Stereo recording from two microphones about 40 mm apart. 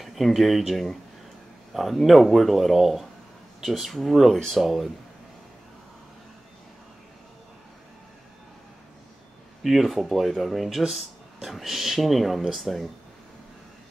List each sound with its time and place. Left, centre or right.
0.0 s speech: centre
9.6 s speech: centre